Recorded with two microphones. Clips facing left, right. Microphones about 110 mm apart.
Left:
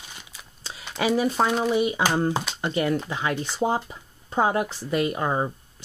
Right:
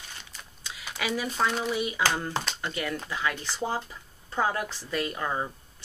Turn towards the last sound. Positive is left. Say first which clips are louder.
# left 6 dB
turn(degrees=30)  # may be behind; listen again after turning